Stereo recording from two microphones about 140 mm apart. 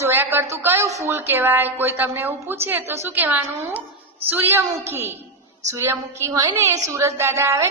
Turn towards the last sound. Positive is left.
turn(degrees=-20)  # may be behind; listen again after turning